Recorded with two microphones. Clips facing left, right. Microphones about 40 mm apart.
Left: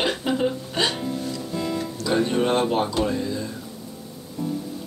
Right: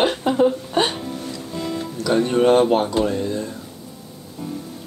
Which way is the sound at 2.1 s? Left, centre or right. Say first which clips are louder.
Right 6 dB; right.